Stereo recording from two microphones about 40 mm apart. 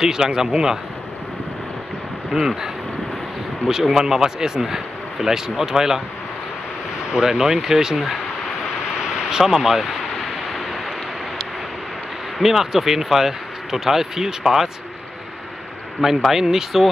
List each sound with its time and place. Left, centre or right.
0.0 s speech: centre
2.3 s speech: centre
8.8 s a sound: centre
12.4 s speech: centre
16.3 s speech: centre